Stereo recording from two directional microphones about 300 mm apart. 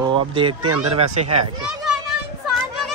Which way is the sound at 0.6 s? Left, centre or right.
Right.